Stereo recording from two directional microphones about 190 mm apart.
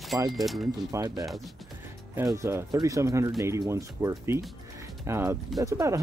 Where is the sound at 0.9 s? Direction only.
20° right (ahead or behind).